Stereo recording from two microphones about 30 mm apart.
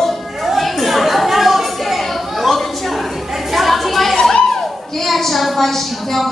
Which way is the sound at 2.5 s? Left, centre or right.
Centre.